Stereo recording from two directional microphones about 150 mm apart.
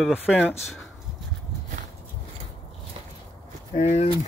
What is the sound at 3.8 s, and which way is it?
Speech, 45° left (ahead or behind).